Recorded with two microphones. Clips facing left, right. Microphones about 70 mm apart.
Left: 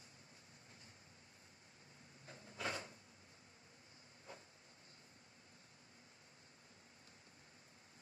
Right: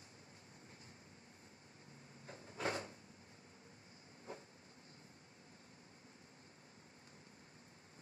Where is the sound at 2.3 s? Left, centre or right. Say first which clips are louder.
Right 3 dB; right.